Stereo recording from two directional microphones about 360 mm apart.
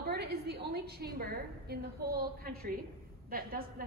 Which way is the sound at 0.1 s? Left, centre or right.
Right.